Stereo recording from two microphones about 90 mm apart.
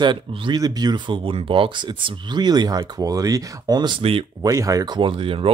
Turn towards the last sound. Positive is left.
turn(degrees=-80)